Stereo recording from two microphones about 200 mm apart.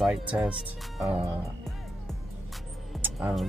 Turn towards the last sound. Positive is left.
turn(degrees=-5)  # may be behind; listen again after turning